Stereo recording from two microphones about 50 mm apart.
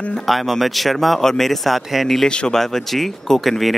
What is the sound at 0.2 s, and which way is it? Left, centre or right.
Speech, centre.